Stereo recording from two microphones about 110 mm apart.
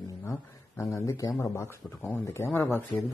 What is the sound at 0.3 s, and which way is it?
A man's voice, 25° left (ahead or behind).